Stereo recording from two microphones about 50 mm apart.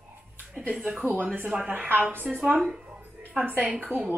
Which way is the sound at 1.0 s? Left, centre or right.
Right.